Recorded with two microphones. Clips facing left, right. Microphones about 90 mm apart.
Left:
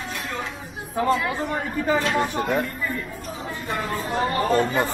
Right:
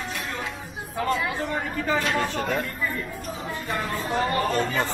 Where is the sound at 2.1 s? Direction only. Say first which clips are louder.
Left 3 dB; 15° left (ahead or behind).